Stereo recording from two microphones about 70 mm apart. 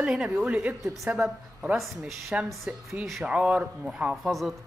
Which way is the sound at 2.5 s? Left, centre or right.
Centre.